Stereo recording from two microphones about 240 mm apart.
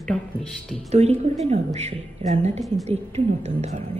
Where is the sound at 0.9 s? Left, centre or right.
Right.